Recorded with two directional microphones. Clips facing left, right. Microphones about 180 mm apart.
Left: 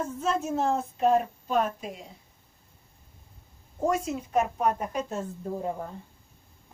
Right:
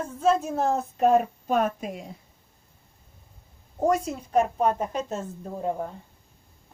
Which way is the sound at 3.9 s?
35° right (ahead or behind).